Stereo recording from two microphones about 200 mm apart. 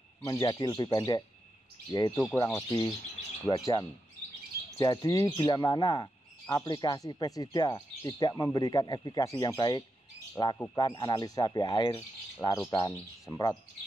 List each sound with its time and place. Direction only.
0.2 s speech: 15° left (ahead or behind)